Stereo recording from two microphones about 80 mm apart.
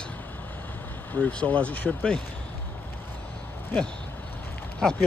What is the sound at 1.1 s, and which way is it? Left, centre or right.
Speech, centre.